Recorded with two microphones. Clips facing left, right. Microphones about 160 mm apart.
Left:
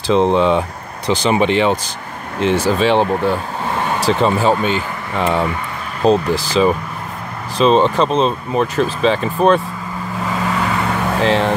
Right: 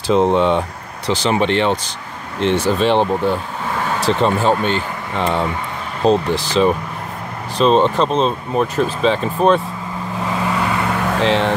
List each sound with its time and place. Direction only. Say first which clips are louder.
0.0 s speech: left 1 dB; 5° right (ahead or behind)
1.0 s speech: left 2 dB; 15° left (ahead or behind)
3.7 s vehicle: left 1 dB; 20° left (ahead or behind)
4.0 s speech: left 1 dB; 5° left (ahead or behind)
11.1 s speech: left 1 dB; centre (ahead or behind)